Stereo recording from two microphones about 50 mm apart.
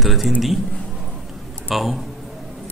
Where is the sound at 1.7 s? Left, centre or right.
Centre.